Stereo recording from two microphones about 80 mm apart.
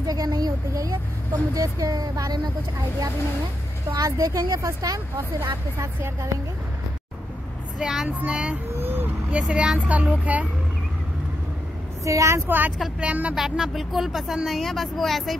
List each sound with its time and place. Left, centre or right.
0.0 s speech: right
3.9 s speech: right
7.8 s speech: centre
8.8 s vehicle: right
9.3 s speech: centre
12.0 s speech: right
12.4 s speech: right
13.3 s speech: centre